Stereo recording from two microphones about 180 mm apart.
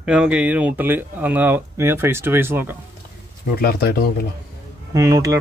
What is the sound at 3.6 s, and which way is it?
Speech, 60° left (ahead or behind).